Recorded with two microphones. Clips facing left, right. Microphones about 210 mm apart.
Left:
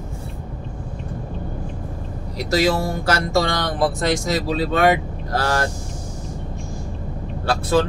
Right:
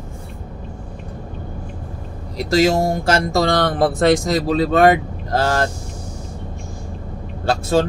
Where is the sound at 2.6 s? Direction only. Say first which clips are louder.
Right 4 dB; 45° right (ahead or behind).